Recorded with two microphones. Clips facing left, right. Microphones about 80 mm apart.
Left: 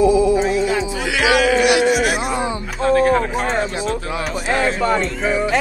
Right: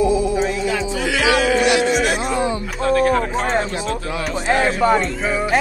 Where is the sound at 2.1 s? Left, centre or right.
Left.